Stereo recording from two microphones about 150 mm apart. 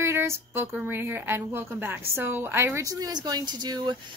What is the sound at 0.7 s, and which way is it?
A woman's voice, 15° right (ahead or behind).